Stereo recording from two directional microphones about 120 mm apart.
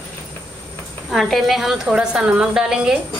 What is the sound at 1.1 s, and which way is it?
A woman's voice, centre (ahead or behind).